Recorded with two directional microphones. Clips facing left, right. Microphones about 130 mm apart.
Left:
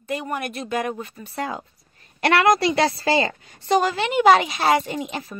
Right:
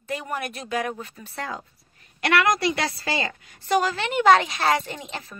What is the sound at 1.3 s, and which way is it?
Speech, 15° left (ahead or behind).